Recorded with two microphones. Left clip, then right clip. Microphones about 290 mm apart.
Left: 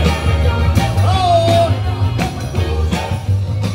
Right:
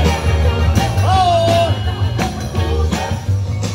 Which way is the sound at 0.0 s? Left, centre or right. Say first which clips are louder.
Even; right.